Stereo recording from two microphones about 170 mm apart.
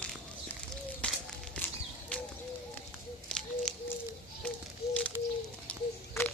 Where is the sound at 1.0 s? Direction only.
5° left (ahead or behind).